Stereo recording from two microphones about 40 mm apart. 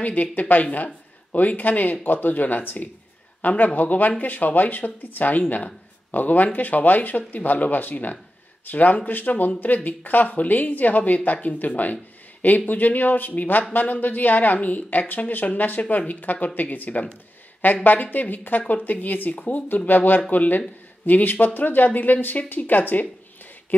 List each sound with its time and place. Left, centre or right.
0.0 s a man's voice: left
23.7 s speech: left